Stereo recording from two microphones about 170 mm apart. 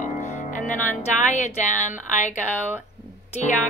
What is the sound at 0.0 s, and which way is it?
Speech, 45° left (ahead or behind).